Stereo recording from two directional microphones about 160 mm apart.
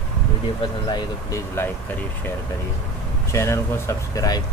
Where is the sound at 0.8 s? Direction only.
25° left (ahead or behind).